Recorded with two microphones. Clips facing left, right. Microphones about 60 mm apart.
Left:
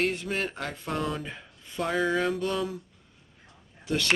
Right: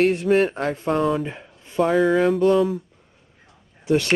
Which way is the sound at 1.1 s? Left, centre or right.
Centre.